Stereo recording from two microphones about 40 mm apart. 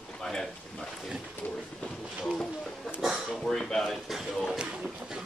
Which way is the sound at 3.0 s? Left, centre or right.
Centre.